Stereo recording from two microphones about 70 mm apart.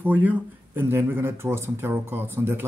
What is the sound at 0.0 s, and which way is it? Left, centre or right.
Speech, right.